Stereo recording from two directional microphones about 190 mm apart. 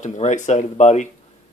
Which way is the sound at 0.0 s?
40° left (ahead or behind).